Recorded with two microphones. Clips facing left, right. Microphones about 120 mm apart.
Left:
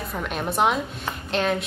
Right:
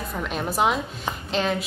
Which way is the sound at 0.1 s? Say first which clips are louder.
Even; centre (ahead or behind).